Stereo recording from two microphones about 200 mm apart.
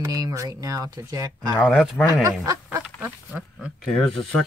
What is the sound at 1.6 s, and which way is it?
Speech, centre (ahead or behind).